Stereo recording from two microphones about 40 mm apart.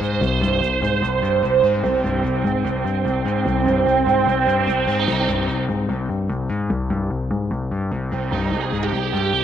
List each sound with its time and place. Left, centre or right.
0.2 s music: centre
1.4 s music: left
3.1 s music: left